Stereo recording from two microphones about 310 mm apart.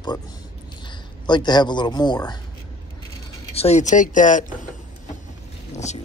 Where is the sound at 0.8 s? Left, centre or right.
Centre.